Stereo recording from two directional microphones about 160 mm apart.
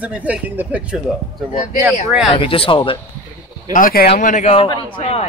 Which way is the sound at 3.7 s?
65° left (ahead or behind).